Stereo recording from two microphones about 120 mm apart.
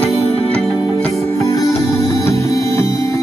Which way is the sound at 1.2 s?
25° left (ahead or behind).